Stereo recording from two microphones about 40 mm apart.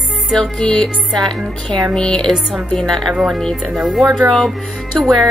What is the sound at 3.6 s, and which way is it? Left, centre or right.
Speech, centre.